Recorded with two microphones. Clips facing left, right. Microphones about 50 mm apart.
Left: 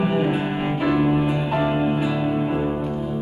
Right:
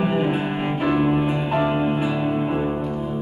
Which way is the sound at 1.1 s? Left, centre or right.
Centre.